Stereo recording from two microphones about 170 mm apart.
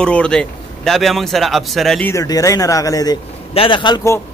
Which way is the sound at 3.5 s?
30° left (ahead or behind).